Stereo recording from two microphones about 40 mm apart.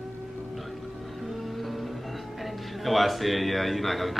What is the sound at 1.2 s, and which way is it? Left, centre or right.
Speech, centre.